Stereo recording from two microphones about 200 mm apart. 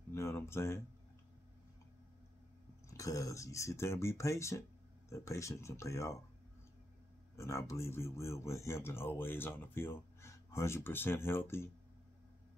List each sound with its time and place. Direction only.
0.1 s a sound: 15° left (ahead or behind)
2.9 s speech: 15° left (ahead or behind)
7.3 s speech: 15° left (ahead or behind)